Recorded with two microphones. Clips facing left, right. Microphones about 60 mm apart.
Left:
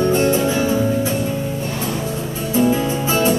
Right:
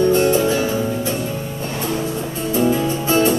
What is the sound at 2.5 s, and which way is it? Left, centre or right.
Music, centre.